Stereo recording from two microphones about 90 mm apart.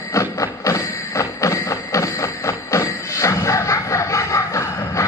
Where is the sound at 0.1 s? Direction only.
35° left (ahead or behind).